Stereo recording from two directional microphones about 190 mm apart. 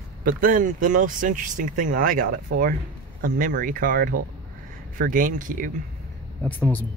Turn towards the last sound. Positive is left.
turn(degrees=10)  # may be behind; listen again after turning